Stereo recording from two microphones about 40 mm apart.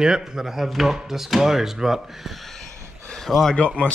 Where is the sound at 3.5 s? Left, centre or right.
Left.